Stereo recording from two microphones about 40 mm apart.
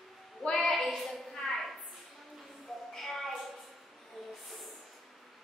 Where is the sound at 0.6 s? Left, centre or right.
Centre.